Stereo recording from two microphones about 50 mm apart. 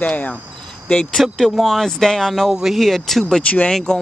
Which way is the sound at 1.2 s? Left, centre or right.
Centre.